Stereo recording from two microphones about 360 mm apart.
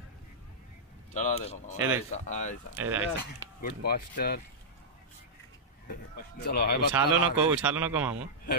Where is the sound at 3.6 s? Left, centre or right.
Left.